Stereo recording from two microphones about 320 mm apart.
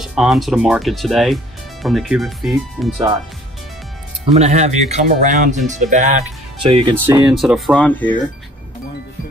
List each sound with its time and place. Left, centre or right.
0.0 s speech: centre
4.3 s speech: right
7.2 s speech: centre